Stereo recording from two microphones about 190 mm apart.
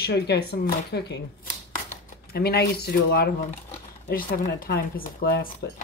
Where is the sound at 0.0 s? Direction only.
60° left (ahead or behind).